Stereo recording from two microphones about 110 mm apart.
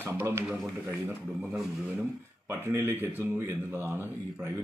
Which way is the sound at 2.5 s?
20° right (ahead or behind).